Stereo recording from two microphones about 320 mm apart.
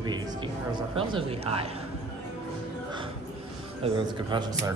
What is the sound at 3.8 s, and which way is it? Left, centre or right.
Speech, centre.